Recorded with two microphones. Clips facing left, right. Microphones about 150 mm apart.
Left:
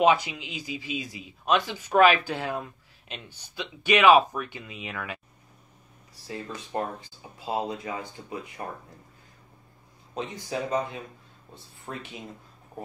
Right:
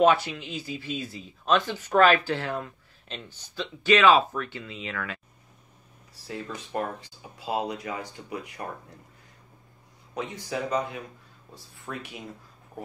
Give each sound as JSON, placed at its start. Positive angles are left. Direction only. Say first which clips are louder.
{"t": 0.0, "sound": "speech", "louder": "right 1 dB", "side_deg": 15}
{"t": 6.2, "sound": "speech", "louder": "right 1 dB", "side_deg": 25}
{"t": 10.1, "sound": "speech", "louder": "even", "side_deg": 25}